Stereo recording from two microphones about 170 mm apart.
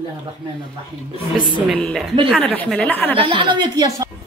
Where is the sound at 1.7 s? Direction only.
Centre (ahead or behind).